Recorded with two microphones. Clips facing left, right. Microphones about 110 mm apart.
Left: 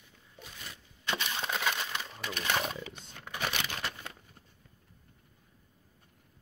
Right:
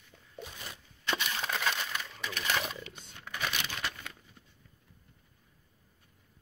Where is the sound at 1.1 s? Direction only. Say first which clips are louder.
Even; 15° left (ahead or behind).